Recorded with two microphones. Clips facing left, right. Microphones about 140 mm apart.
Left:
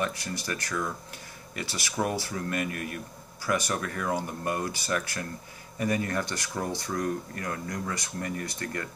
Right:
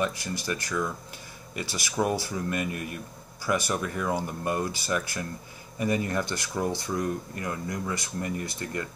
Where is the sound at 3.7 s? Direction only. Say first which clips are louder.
Right 1 dB; 10° right (ahead or behind).